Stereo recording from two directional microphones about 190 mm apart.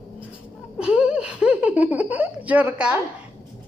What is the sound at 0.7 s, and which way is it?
Speech, 5° right (ahead or behind).